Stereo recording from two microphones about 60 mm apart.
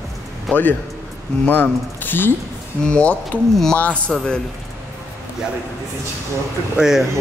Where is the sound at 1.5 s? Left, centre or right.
Left.